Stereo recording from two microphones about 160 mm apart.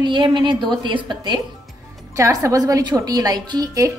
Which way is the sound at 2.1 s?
20° right (ahead or behind).